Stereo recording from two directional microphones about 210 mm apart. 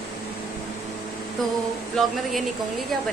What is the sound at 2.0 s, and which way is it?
Speech, 5° left (ahead or behind).